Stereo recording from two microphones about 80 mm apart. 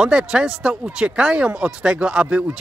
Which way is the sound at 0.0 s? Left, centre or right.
Centre.